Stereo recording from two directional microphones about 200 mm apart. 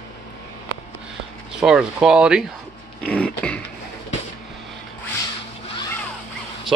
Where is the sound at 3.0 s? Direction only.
5° left (ahead or behind).